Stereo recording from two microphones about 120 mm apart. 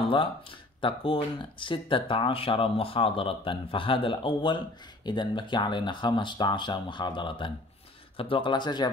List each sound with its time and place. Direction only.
0.1 s speech: 45° left (ahead or behind)